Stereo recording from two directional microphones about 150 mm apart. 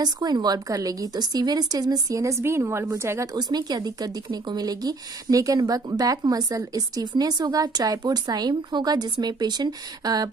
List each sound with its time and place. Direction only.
0.0 s a woman's voice: 25° right (ahead or behind)